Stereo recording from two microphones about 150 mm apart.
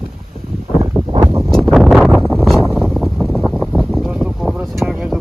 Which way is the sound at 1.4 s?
5° left (ahead or behind).